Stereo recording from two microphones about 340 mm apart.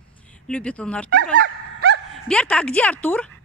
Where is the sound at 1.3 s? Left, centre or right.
Right.